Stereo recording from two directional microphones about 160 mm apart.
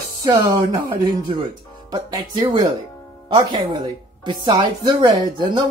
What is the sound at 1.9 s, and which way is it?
Speech, 30° right (ahead or behind).